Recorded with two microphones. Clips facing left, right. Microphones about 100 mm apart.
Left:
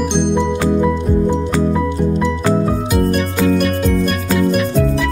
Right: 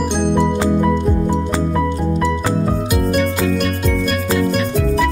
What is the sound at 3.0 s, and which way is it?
Music, 5° right (ahead or behind).